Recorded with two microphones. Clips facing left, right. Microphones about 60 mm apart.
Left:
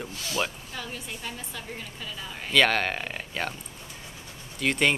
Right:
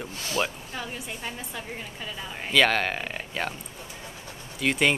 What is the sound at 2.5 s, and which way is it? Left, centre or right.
Speech, centre.